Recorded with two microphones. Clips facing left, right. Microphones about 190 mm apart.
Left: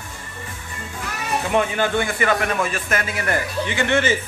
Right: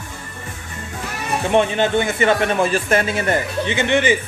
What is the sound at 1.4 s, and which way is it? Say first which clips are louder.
A man's voice: right 4 dB; 25° right (ahead or behind).